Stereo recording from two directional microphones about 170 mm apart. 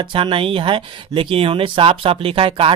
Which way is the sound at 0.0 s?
30° right (ahead or behind).